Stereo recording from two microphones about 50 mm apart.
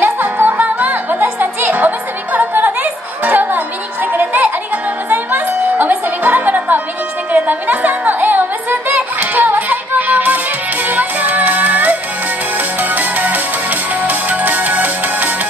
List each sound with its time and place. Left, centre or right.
0.0 s music: right
0.6 s music: right